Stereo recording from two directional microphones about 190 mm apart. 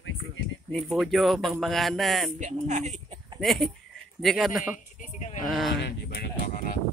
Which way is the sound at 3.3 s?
Centre (ahead or behind).